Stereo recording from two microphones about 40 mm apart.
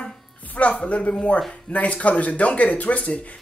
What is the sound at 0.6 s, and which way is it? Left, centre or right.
Speech, left.